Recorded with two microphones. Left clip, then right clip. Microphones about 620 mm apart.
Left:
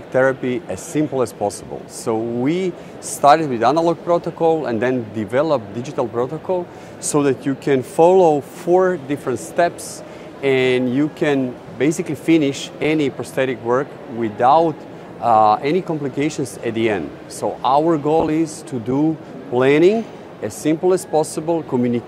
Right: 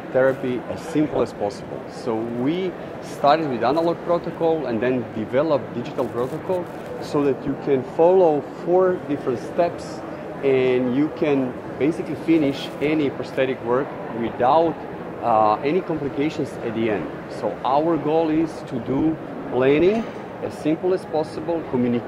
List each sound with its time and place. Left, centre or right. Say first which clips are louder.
0.2 s speech: left 3 dB; left
20.4 s speech: left 5 dB; left